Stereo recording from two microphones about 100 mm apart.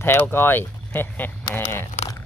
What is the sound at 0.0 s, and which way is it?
Speech, 20° left (ahead or behind).